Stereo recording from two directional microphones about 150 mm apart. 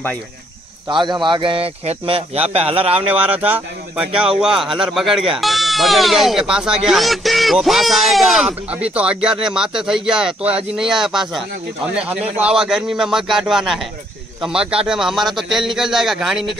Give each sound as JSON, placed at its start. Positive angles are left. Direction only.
{"t": 0.8, "sound": "speech", "side_deg": -30}
{"t": 3.2, "sound": "a man's voice", "side_deg": -10}